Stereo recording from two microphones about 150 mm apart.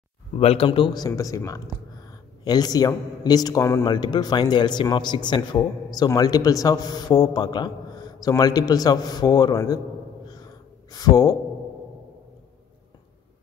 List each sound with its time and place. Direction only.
0.4 s speech: 40° left (ahead or behind)
0.7 s speech: 30° left (ahead or behind)
10.2 s gasp: 25° left (ahead or behind)